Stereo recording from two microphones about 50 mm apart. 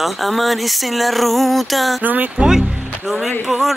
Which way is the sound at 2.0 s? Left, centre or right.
Right.